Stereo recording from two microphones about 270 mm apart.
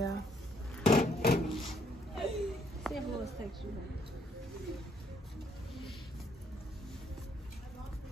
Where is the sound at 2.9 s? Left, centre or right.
Centre.